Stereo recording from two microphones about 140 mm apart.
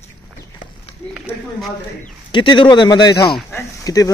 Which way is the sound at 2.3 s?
35° left (ahead or behind).